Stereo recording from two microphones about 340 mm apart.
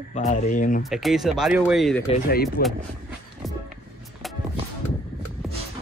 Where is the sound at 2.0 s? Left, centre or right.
Left.